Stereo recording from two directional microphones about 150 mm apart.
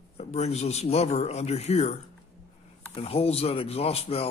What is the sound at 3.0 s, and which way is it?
Speech, 40° left (ahead or behind).